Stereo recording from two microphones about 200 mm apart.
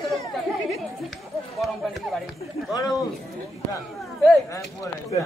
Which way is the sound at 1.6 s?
Centre (ahead or behind).